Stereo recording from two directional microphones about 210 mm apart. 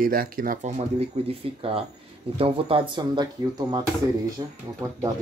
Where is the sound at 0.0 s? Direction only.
45° right (ahead or behind); by 5.1 s 15° right (ahead or behind).